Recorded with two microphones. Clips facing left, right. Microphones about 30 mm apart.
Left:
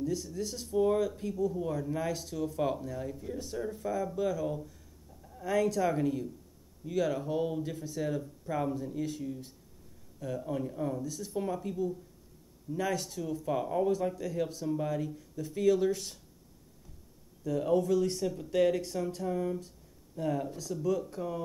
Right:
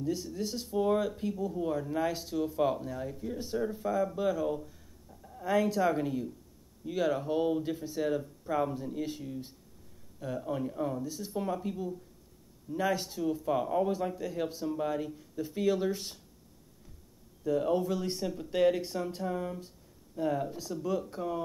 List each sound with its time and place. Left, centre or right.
0.0 s speech: right
3.3 s speech: right
3.6 s speech: centre
17.4 s speech: centre
17.7 s speech: right